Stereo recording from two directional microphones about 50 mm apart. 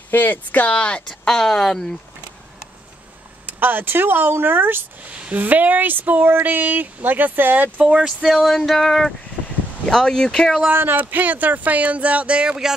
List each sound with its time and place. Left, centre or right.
0.1 s speech: left
1.0 s speech: centre
3.4 s speech: right
5.1 s speech: right
7.8 s speech: centre
8.3 s male singing: centre
9.8 s speech: centre
10.7 s speech: right